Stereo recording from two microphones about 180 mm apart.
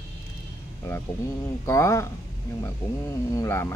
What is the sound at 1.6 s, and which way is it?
Speech, 15° left (ahead or behind).